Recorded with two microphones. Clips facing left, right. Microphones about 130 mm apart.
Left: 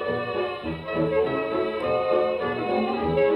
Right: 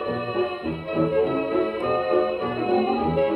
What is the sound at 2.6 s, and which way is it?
Music, 25° right (ahead or behind).